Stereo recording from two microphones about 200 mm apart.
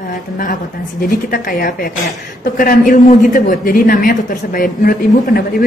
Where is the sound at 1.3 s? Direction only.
45° left (ahead or behind).